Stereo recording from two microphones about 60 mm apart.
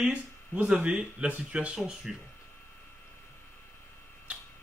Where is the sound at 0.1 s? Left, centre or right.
Centre.